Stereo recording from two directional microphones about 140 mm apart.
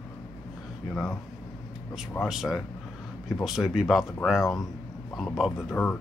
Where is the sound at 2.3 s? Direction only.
Centre (ahead or behind).